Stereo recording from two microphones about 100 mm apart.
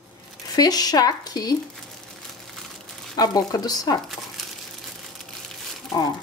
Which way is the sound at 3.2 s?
40° left (ahead or behind).